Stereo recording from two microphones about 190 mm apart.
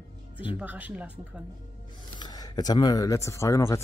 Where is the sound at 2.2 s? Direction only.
20° left (ahead or behind).